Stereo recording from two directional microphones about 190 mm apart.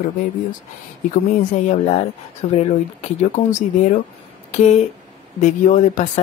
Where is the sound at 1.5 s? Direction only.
35° left (ahead or behind).